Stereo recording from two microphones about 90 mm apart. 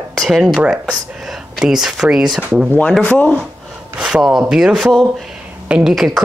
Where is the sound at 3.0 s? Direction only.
15° left (ahead or behind).